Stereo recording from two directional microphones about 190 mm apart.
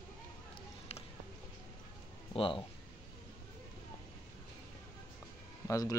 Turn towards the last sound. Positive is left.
turn(degrees=15)  # may be behind; listen again after turning